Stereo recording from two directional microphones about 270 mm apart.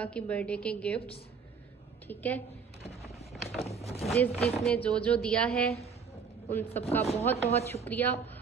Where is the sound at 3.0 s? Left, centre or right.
Left.